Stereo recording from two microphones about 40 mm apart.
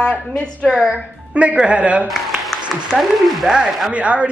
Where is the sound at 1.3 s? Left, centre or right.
Right.